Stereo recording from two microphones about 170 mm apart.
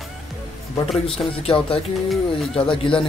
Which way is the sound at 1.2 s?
30° left (ahead or behind).